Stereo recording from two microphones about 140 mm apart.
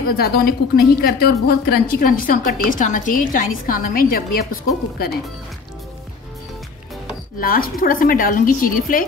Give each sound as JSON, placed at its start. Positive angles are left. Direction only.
{"t": 0.0, "sound": "a woman's voice", "side_deg": 90}
{"t": 7.3, "sound": "a woman's voice", "side_deg": 90}